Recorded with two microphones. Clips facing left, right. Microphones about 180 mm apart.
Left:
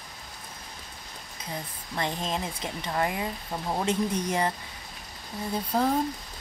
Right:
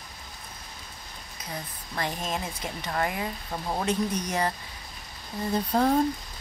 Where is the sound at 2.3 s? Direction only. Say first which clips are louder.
Left 1 dB; 25° left (ahead or behind).